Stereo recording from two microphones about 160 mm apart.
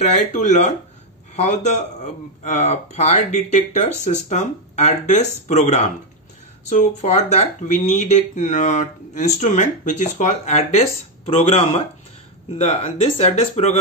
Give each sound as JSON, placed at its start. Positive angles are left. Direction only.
{"t": 0.3, "sound": "a man's voice", "side_deg": 45}